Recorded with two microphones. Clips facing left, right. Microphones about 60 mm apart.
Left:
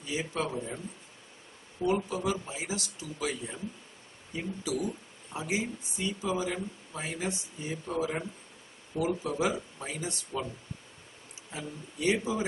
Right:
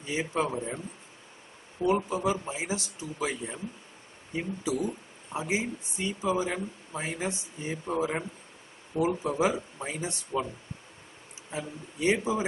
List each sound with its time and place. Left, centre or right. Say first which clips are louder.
0.0 s speech: right 3 dB; right
1.8 s speech: right 3 dB; right
11.5 s speech: right 3 dB; right